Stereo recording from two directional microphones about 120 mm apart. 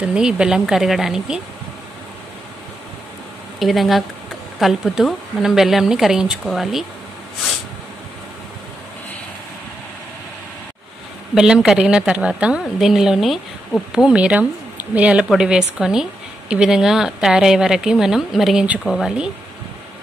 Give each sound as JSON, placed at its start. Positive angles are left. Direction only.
{"t": 0.0, "sound": "speech", "side_deg": -5}
{"t": 3.5, "sound": "speech", "side_deg": 0}
{"t": 11.3, "sound": "speech", "side_deg": -5}